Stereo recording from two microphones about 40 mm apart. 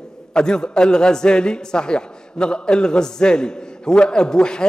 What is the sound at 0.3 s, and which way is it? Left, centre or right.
A man's voice, centre.